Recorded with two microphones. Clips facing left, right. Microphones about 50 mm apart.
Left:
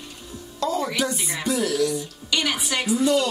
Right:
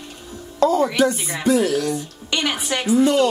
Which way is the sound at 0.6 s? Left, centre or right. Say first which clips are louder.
Right 8 dB; right.